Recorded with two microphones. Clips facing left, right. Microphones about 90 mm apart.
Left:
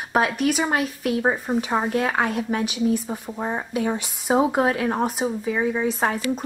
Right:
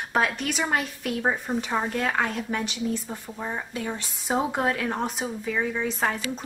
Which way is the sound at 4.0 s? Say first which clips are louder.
Left 5 dB; 10° left (ahead or behind).